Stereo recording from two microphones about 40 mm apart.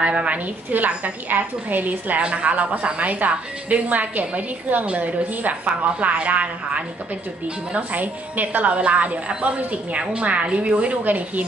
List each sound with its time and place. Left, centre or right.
0.0 s a woman's voice: right